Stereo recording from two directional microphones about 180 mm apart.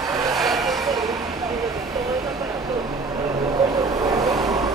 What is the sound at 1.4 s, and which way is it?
Vehicle, 20° right (ahead or behind).